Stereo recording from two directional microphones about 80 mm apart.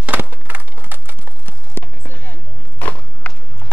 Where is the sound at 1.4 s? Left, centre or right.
Left.